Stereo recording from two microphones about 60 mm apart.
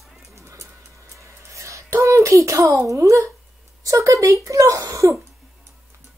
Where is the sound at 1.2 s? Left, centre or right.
Right.